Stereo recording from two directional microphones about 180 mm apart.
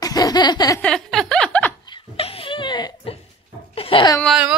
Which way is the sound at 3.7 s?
30° left (ahead or behind).